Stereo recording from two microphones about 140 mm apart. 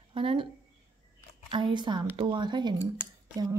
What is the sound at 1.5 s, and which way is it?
A woman's voice, 35° right (ahead or behind).